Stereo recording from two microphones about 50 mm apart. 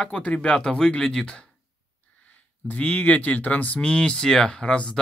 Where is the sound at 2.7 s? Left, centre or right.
Left.